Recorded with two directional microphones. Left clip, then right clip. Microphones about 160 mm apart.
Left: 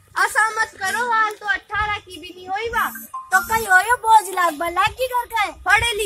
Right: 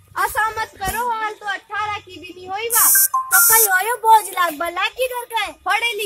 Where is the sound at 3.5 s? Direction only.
20° right (ahead or behind).